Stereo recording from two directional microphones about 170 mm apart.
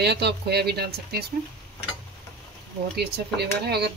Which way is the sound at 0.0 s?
75° right (ahead or behind).